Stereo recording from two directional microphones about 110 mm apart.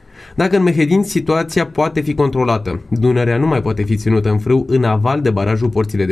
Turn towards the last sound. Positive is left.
turn(degrees=0)  # may be behind; listen again after turning